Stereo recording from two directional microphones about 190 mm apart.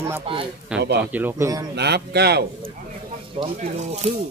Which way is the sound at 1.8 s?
60° right (ahead or behind).